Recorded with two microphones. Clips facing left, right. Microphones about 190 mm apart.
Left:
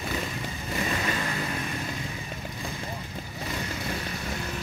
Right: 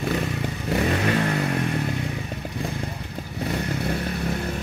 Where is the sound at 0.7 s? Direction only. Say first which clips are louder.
Right 7 dB; 65° right (ahead or behind).